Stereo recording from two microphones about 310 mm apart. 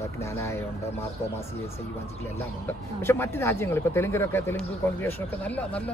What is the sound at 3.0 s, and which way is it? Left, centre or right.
Speech, centre.